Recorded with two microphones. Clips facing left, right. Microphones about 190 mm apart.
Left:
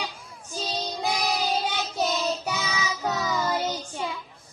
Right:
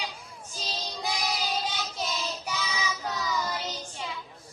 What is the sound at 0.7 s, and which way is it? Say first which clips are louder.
Child singing: left 5 dB; 65° left (ahead or behind).